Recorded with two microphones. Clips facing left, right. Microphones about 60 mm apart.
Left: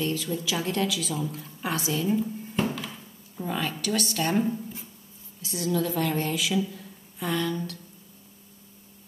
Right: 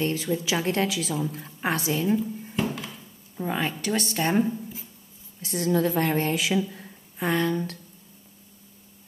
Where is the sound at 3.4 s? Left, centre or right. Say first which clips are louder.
Right 2 dB; right.